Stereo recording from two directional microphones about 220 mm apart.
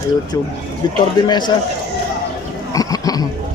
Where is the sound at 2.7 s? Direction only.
15° left (ahead or behind).